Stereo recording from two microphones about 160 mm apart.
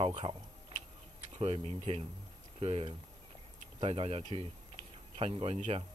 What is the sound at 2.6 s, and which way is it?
Speech, 35° right (ahead or behind).